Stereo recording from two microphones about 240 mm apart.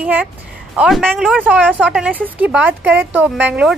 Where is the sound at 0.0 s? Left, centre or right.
Centre.